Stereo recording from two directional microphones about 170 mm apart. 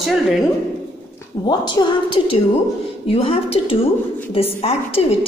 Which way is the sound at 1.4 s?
25° left (ahead or behind).